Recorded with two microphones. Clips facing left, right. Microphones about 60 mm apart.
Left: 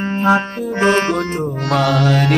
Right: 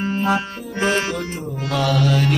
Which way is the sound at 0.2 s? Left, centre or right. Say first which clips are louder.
Left 10 dB; left.